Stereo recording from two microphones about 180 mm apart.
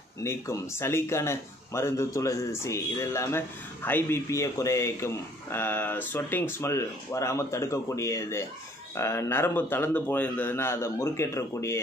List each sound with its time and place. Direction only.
0.2 s speech: 15° left (ahead or behind)